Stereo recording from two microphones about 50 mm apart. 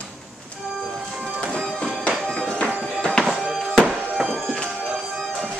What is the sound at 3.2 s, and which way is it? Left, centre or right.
Music, centre.